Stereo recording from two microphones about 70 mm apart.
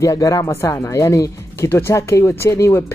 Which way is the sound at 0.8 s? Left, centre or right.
Left.